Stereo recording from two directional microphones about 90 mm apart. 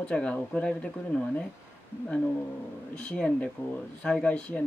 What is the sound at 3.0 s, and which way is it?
Speech, 15° left (ahead or behind).